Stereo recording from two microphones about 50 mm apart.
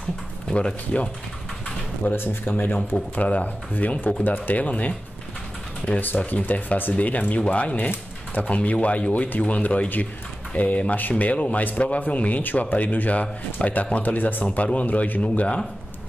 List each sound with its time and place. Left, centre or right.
0.5 s speech: centre
2.1 s speech: left
3.2 s speech: left
5.9 s speech: left